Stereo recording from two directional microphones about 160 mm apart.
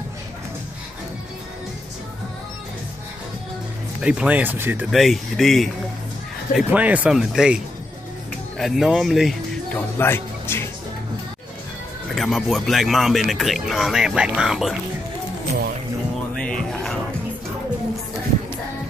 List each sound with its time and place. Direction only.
4.0 s speech: 5° right (ahead or behind)
4.9 s speech: centre (ahead or behind)
9.8 s speech: 15° left (ahead or behind)
12.2 s speech: centre (ahead or behind)
16.7 s music: 5° left (ahead or behind)